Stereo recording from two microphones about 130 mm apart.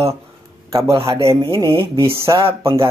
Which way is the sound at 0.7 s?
20° right (ahead or behind).